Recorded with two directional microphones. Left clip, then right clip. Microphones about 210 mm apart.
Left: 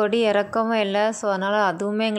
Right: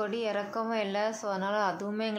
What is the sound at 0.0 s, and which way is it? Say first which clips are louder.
Speech: left 12 dB; 35° left (ahead or behind).